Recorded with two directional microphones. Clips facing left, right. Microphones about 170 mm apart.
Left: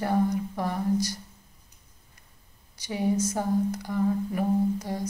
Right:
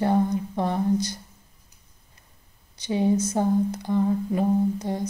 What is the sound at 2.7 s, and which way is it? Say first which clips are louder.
Speech: right 4 dB; 25° right (ahead or behind).